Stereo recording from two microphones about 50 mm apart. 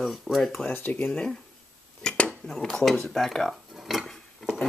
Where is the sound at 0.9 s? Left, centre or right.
Left.